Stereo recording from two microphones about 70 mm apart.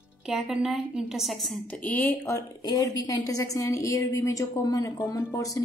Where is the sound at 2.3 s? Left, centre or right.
Left.